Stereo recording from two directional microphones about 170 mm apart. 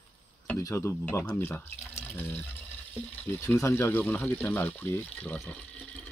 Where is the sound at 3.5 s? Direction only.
15° left (ahead or behind).